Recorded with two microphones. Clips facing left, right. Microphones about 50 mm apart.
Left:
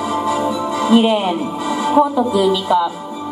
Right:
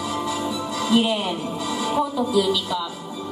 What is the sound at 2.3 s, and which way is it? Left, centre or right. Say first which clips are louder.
Speech: left 7 dB; left.